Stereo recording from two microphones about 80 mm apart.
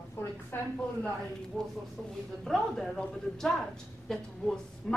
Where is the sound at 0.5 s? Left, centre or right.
Left.